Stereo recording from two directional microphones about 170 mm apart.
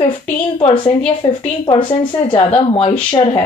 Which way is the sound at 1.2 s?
30° left (ahead or behind).